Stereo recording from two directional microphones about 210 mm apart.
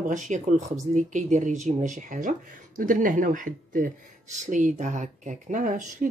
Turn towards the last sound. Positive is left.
turn(degrees=-40)  # may be behind; listen again after turning